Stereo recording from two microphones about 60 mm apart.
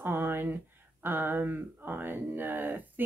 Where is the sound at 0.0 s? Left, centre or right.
Right.